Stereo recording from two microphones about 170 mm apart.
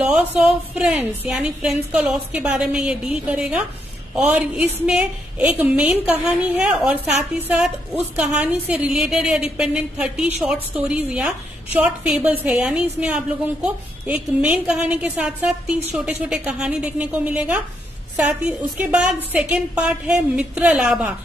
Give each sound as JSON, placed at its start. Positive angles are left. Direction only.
{"t": 0.0, "sound": "a woman's voice", "side_deg": -5}